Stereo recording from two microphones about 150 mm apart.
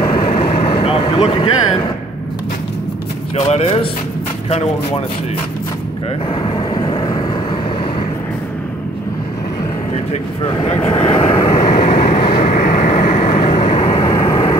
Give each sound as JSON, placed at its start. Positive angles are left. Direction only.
{"t": 0.3, "sound": "vehicle", "side_deg": 40}
{"t": 3.3, "sound": "speech", "side_deg": 45}
{"t": 6.7, "sound": "vehicle", "side_deg": 30}
{"t": 11.1, "sound": "vehicle", "side_deg": 35}